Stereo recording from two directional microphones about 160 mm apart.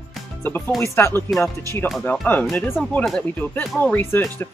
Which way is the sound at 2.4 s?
5° left (ahead or behind).